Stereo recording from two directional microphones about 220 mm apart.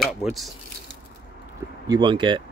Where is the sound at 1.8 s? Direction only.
20° right (ahead or behind).